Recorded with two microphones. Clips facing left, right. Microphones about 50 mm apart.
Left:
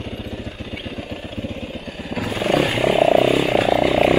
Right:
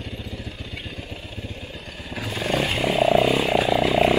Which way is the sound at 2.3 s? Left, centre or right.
Centre.